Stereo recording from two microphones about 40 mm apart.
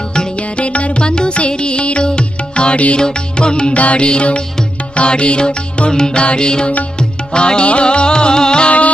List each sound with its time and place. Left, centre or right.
0.6 s music: left
3.7 s music: left